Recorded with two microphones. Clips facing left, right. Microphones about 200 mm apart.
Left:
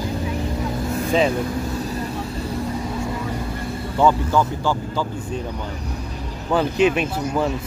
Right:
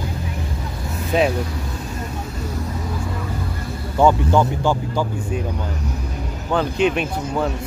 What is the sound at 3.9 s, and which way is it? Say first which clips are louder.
Speech: right 2 dB; 15° right (ahead or behind).